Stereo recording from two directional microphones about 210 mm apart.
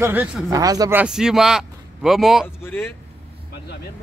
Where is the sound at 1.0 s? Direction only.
5° right (ahead or behind).